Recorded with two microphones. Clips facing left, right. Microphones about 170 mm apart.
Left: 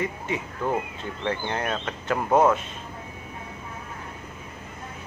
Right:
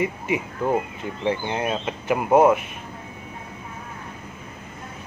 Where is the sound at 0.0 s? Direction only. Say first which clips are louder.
Right 4 dB; 15° right (ahead or behind).